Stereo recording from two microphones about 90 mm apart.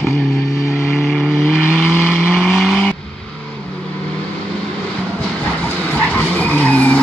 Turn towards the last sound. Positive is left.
turn(degrees=15)  # may be behind; listen again after turning